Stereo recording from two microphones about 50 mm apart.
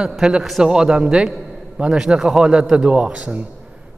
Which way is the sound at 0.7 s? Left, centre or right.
Centre.